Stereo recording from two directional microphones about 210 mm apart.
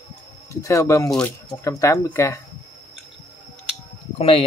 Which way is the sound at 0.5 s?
15° left (ahead or behind).